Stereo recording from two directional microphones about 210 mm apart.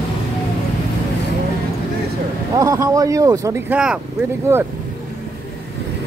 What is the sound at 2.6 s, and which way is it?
Speech, 15° right (ahead or behind).